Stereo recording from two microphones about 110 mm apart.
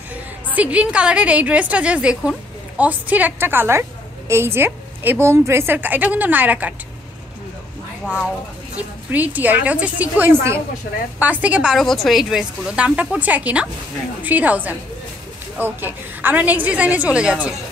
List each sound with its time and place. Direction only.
0.5 s a woman's voice: 15° right (ahead or behind)
8.7 s a woman's voice: 15° right (ahead or behind)